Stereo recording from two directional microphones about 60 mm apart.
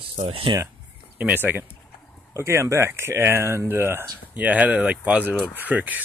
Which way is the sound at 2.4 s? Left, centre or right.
Right.